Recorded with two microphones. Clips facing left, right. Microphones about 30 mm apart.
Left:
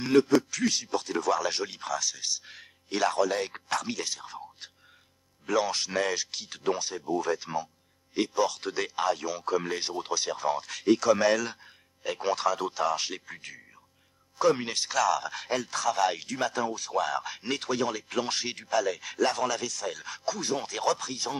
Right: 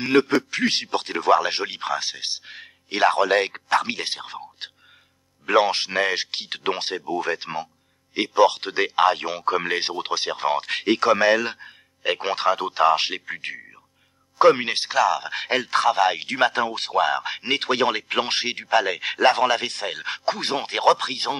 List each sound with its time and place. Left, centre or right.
0.0 s speech: right
5.5 s speech: right
15.0 s a man's voice: right
15.3 s speech: right
16.3 s speech: right
17.0 s speech: right